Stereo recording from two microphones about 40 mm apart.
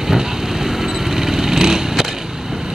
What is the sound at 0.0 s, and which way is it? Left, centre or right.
Vehicle, centre.